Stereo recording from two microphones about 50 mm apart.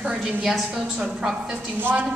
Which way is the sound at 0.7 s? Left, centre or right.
Centre.